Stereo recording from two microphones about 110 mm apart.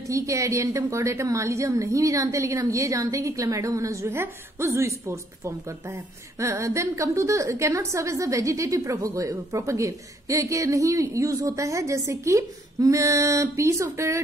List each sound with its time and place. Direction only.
0.1 s a woman's voice: 30° right (ahead or behind)